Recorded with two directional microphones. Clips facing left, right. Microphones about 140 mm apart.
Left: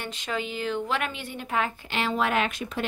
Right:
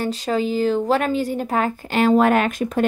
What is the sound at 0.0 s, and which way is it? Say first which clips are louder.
A woman's voice: right 10 dB; 35° right (ahead or behind).